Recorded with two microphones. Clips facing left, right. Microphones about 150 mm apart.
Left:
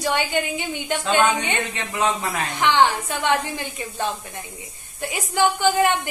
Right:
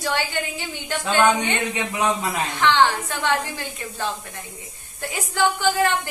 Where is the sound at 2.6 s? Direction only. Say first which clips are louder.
Even; 15° left (ahead or behind).